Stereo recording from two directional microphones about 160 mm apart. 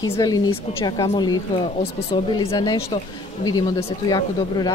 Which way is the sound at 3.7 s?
25° left (ahead or behind).